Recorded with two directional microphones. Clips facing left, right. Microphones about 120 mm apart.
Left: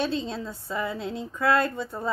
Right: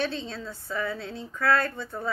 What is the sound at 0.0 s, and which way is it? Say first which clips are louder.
A woman's voice: left 3 dB; 15° left (ahead or behind).